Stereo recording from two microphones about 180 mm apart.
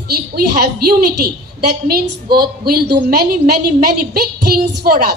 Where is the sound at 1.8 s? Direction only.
55° right (ahead or behind).